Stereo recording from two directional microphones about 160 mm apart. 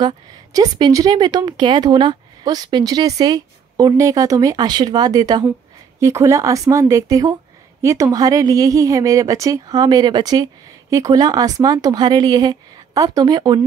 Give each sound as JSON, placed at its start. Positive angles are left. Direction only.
{"t": 0.0, "sound": "speech", "side_deg": -25}